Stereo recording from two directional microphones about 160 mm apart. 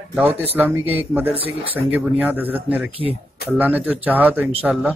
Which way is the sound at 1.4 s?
35° right (ahead or behind).